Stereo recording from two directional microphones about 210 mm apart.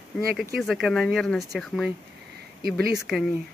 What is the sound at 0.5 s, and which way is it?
Speech, centre (ahead or behind).